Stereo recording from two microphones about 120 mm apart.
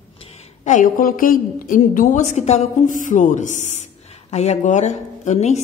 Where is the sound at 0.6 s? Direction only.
90° left.